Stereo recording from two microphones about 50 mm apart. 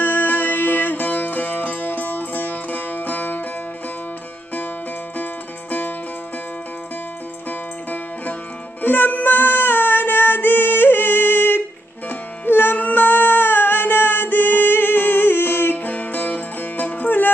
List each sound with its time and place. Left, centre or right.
0.0 s music: left
5.1 s music: left
8.8 s music: left